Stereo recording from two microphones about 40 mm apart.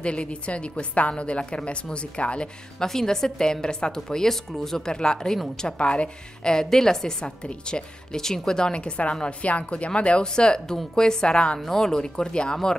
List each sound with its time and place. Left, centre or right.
0.0 s a woman's voice: left
2.8 s a woman's voice: centre
11.6 s speech: centre